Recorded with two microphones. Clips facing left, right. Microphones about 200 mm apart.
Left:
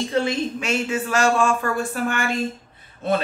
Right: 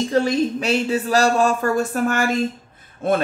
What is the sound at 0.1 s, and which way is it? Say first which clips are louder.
A woman's voice: right 5 dB; 40° right (ahead or behind).